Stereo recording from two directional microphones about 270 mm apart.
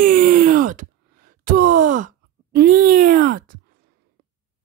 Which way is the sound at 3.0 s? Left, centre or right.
Right.